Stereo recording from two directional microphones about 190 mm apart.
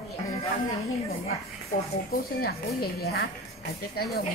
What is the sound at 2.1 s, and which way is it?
A woman's voice, 50° left (ahead or behind).